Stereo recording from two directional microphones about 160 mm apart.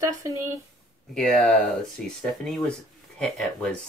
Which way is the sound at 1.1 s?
Centre (ahead or behind).